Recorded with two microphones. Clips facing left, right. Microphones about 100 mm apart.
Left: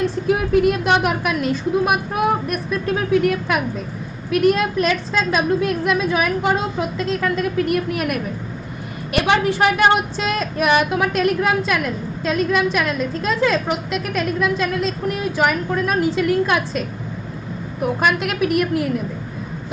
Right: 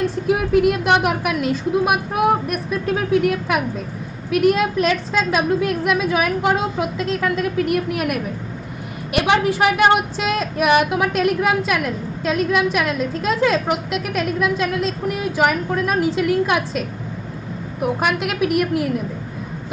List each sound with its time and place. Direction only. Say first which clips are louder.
0.1 s a woman's voice: even; 5° right (ahead or behind)
17.8 s speech: left 1 dB; 5° right (ahead or behind)